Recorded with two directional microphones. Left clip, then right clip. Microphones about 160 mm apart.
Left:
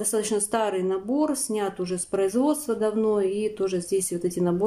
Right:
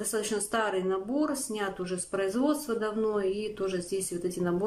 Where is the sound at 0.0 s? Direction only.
20° left (ahead or behind).